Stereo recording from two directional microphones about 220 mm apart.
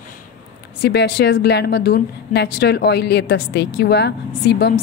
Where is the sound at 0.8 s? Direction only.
50° left (ahead or behind).